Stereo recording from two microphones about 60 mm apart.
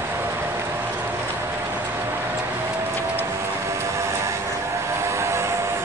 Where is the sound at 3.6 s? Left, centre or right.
Right.